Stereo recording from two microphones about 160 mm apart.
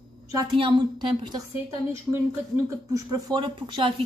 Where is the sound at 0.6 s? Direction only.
30° right (ahead or behind).